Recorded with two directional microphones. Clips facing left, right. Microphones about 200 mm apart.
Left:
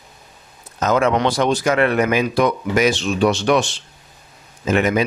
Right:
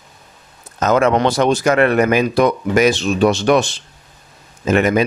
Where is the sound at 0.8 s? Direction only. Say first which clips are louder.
Right 3 dB; 50° right (ahead or behind).